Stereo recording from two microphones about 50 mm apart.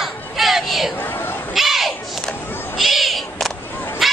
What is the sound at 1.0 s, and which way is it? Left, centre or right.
Chatter, left.